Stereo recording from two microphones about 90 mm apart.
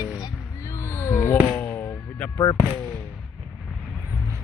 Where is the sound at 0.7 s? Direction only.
30° left (ahead or behind).